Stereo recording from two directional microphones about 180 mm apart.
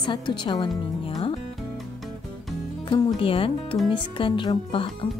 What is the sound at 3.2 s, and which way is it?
A woman's voice, 30° left (ahead or behind).